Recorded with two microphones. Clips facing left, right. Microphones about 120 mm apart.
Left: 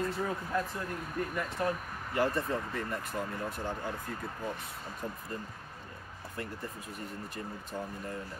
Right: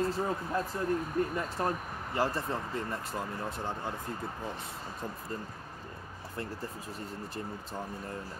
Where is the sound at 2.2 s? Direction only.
30° right (ahead or behind).